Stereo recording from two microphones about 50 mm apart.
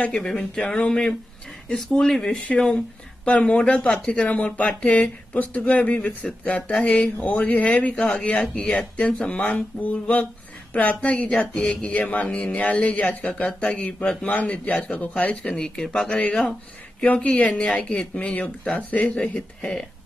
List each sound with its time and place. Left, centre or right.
0.1 s speech: centre
3.3 s speech: left
7.9 s speech: centre
8.2 s speech: left
15.4 s speech: centre
19.6 s speech: centre